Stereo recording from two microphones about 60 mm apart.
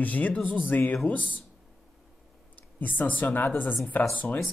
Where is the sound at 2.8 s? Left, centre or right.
Left.